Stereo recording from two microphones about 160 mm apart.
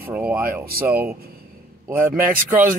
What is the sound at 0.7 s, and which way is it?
Speech, 70° right (ahead or behind).